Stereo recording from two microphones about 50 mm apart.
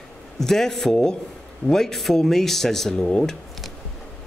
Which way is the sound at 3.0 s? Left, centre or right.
Left.